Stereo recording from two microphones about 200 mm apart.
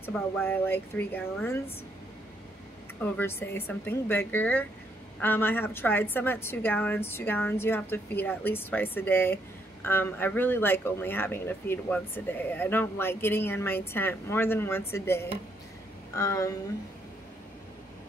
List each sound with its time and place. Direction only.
0.0 s a woman's voice: 10° left (ahead or behind)
3.0 s a woman's voice: 10° left (ahead or behind)